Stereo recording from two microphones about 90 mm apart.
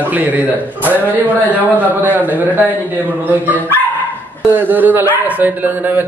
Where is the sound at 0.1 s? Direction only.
20° right (ahead or behind).